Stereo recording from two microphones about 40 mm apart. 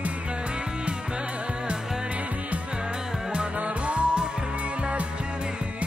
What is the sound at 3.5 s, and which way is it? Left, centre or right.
Music, right.